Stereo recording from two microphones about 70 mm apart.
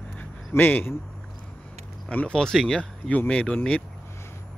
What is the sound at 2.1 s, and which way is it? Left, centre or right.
Speech, left.